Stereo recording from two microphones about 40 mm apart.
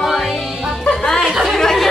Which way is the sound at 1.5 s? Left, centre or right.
Centre.